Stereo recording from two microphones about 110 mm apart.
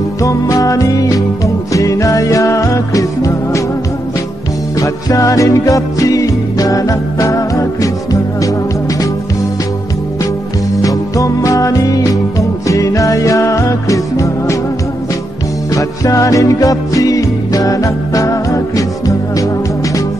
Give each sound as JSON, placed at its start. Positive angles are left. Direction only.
{"t": 0.2, "sound": "music", "side_deg": 30}
{"t": 4.7, "sound": "music", "side_deg": 30}
{"t": 10.8, "sound": "music", "side_deg": 30}
{"t": 15.7, "sound": "music", "side_deg": 30}